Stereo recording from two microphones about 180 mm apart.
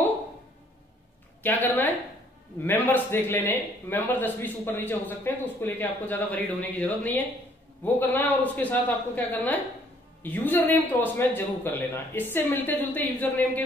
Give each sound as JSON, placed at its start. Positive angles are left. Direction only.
{"t": 1.4, "sound": "a man's voice", "side_deg": 10}